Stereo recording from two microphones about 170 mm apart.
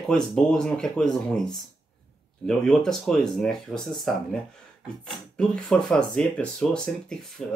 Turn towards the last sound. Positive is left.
turn(degrees=0)  # may be behind; listen again after turning